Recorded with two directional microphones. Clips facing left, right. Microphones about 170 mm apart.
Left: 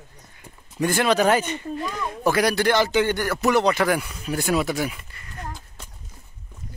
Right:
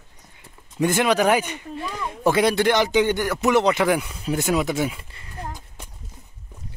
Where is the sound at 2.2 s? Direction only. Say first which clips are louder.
Right 2 dB; 25° right (ahead or behind).